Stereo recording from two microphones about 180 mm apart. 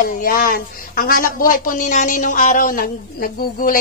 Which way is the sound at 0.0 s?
50° left (ahead or behind).